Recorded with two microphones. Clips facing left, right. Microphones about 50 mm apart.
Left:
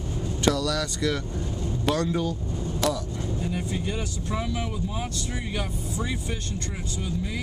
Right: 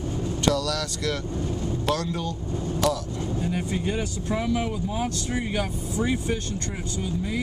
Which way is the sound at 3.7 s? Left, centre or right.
Right.